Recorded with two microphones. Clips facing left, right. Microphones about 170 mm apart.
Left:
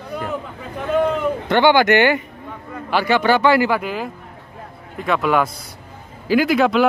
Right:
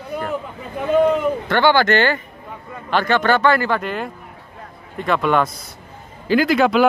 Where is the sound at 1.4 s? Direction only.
15° left (ahead or behind).